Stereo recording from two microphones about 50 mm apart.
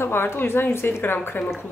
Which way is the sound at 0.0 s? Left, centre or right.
Left.